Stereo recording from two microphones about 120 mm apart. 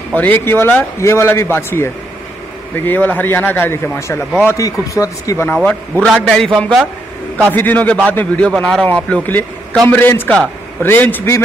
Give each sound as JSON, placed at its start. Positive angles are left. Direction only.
{"t": 0.1, "sound": "a man's voice", "side_deg": 15}
{"t": 6.0, "sound": "a man's voice", "side_deg": 5}
{"t": 7.5, "sound": "a man's voice", "side_deg": 15}